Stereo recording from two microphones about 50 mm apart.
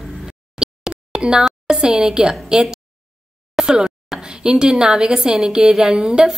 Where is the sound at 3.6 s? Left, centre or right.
Centre.